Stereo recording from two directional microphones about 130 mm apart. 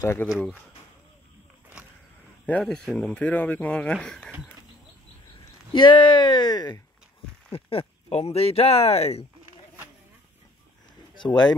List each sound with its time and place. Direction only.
0.0 s speech: 20° left (ahead or behind)
2.4 s speech: 10° left (ahead or behind)
5.7 s speech: 35° left (ahead or behind)
7.5 s speech: 50° left (ahead or behind)
11.1 s speech: 35° left (ahead or behind)